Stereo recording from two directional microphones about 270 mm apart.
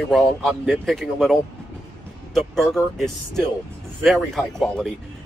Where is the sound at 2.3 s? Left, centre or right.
Centre.